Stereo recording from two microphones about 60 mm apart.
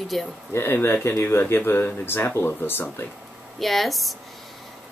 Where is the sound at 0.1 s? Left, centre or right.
Centre.